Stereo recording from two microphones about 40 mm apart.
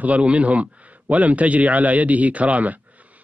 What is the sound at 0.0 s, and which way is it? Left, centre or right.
Speech, right.